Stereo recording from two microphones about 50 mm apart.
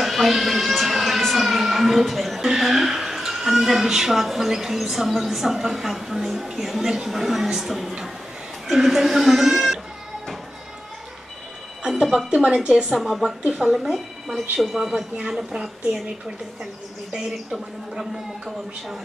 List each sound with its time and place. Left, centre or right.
0.0 s speech: centre
11.8 s music: centre
12.4 s speech: centre
17.1 s speech: centre